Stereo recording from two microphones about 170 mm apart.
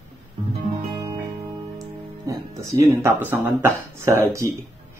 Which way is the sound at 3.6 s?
20° right (ahead or behind).